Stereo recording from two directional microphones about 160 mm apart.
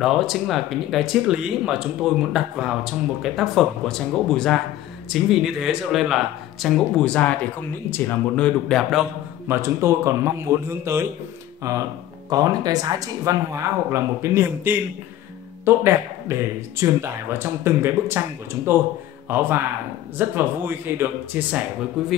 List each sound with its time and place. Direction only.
0.0 s speech: centre (ahead or behind)
9.5 s speech: 15° right (ahead or behind)